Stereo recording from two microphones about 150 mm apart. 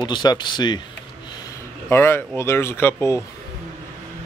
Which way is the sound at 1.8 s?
15° left (ahead or behind).